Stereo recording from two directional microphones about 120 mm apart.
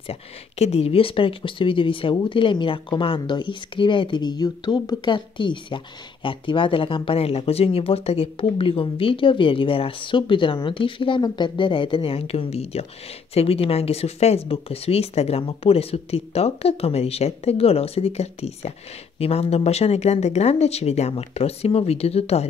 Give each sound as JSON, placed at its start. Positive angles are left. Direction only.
{"t": 0.0, "sound": "speech", "side_deg": 60}